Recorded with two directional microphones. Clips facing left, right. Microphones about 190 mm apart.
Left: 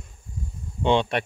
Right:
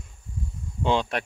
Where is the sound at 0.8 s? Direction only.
Centre (ahead or behind).